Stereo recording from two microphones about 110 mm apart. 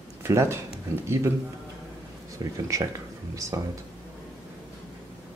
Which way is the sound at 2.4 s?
30° right (ahead or behind).